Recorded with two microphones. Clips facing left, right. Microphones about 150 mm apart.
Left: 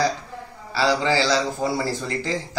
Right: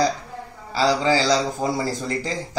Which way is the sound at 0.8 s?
10° right (ahead or behind).